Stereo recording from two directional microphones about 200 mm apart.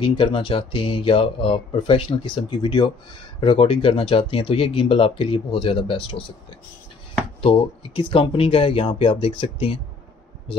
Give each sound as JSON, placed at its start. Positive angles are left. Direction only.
{"t": 0.0, "sound": "speech", "side_deg": 25}
{"t": 7.4, "sound": "speech", "side_deg": 25}